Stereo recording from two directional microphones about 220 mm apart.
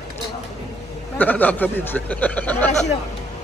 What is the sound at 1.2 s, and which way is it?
Speech, 5° left (ahead or behind).